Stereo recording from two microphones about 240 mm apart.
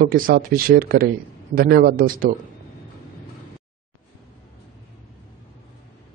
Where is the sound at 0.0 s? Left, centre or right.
Right.